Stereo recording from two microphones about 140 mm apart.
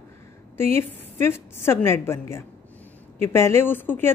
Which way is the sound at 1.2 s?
15° left (ahead or behind).